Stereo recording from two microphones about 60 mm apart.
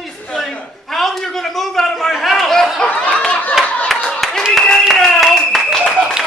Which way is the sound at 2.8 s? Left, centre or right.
Left.